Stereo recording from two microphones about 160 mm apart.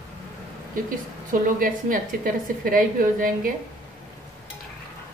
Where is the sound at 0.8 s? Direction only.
60° right (ahead or behind).